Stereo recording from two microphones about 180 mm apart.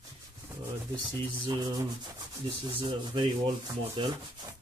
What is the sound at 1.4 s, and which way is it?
Rub, 25° right (ahead or behind).